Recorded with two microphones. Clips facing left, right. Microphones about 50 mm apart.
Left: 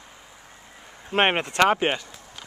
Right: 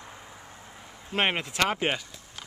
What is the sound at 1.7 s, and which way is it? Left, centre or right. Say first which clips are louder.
Speech: left 5 dB; centre.